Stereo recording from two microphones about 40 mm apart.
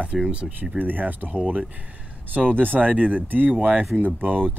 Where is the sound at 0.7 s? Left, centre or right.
Right.